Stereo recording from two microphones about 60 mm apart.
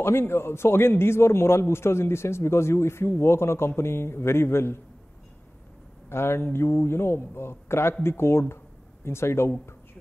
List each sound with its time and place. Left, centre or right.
0.0 s a man's voice: left
6.0 s a man's voice: left